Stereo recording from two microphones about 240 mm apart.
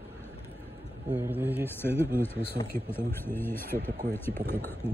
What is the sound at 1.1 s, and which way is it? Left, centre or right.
Speech, centre.